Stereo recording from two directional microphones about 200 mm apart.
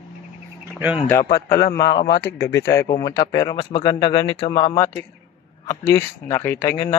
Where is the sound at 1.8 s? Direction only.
20° left (ahead or behind).